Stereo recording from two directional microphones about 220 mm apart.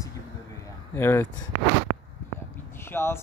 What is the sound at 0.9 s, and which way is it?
Speech, 10° left (ahead or behind).